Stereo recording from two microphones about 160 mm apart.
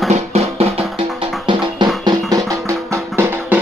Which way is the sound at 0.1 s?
40° right (ahead or behind).